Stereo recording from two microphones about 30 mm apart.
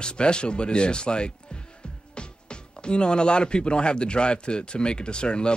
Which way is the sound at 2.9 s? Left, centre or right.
Left.